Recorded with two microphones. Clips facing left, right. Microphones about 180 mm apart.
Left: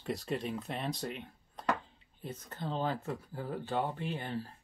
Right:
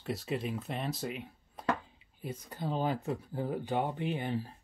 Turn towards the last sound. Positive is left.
turn(degrees=-15)  # may be behind; listen again after turning